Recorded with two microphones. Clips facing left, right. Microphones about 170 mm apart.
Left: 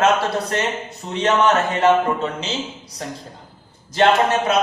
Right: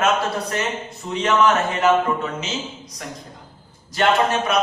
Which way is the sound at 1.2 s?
30° left (ahead or behind).